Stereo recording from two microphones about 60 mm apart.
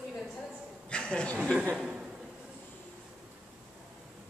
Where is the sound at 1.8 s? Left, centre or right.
Centre.